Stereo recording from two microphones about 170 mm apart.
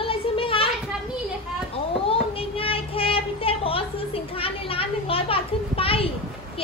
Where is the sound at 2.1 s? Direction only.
35° left (ahead or behind).